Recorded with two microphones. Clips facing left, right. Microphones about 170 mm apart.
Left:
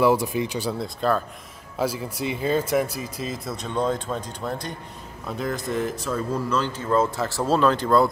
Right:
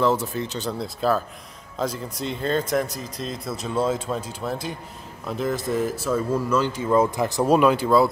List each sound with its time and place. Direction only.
0.0 s speech: 10° left (ahead or behind)
0.8 s speech: 5° right (ahead or behind)
1.8 s speech: 10° left (ahead or behind)